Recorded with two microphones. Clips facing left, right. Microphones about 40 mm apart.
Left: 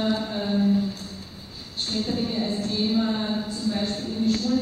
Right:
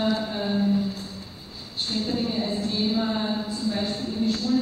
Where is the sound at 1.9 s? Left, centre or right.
Centre.